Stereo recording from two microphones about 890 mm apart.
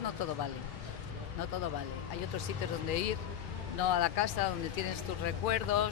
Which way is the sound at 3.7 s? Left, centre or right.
Left.